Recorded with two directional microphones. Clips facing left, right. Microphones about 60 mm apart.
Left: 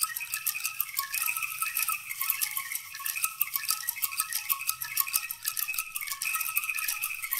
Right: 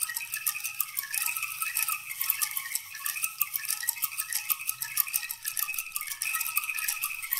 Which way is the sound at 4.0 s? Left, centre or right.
Left.